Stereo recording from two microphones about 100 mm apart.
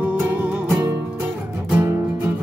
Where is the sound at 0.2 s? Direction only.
15° right (ahead or behind).